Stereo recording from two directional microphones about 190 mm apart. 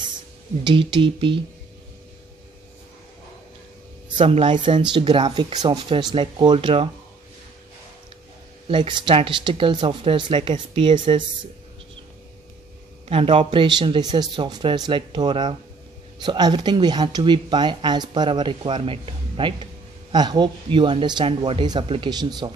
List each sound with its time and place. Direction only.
0.7 s speech: 25° right (ahead or behind)
4.2 s speech: 30° right (ahead or behind)
8.6 s speech: 25° right (ahead or behind)
13.1 s speech: 30° right (ahead or behind)